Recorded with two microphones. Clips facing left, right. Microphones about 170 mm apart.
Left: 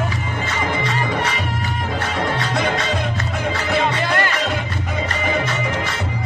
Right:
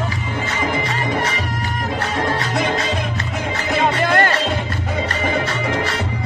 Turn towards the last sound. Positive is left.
turn(degrees=-55)  # may be behind; listen again after turning